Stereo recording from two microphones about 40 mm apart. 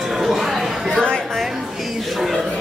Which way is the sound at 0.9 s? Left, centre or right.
Left.